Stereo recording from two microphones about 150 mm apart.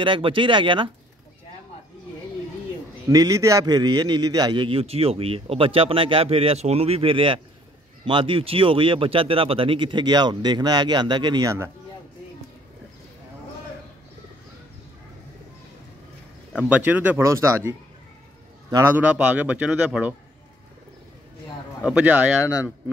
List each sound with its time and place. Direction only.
0.0 s a man's voice: 35° right (ahead or behind)
3.1 s a man's voice: 25° right (ahead or behind)
16.5 s speech: 10° right (ahead or behind)
18.9 s speech: 10° right (ahead or behind)
21.8 s speech: 10° right (ahead or behind)